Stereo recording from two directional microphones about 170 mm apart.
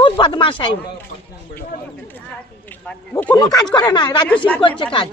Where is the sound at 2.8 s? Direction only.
10° left (ahead or behind).